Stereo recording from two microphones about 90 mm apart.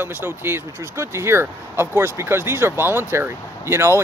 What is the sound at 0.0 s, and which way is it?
Speech, 25° right (ahead or behind).